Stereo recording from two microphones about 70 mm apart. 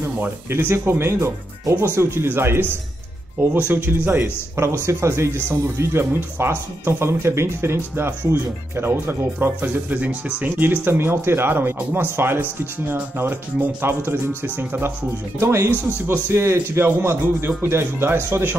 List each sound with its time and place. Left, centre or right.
0.0 s a man's voice: right
3.5 s a man's voice: right